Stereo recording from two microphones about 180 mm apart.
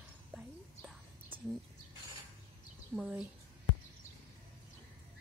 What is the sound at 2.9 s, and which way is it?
Speech, 5° right (ahead or behind).